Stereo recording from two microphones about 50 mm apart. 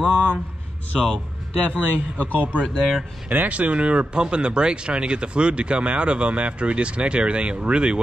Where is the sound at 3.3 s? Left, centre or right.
Right.